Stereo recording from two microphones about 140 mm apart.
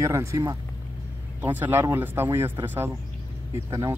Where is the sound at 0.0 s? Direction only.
20° right (ahead or behind).